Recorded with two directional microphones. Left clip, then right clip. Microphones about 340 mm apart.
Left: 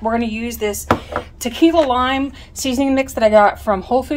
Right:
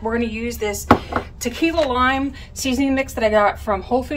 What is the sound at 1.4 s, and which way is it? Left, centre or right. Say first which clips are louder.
Speech: left 6 dB; left.